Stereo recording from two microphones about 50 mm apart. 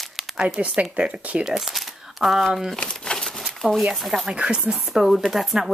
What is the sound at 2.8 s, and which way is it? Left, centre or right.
Crumpling, centre.